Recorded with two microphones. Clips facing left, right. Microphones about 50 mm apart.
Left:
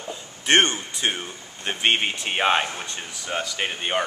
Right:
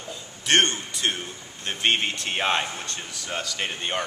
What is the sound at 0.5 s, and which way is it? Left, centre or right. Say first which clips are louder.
Speech: left 2 dB; centre.